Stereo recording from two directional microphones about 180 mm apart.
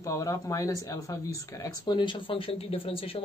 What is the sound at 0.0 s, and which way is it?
Speech, 15° left (ahead or behind).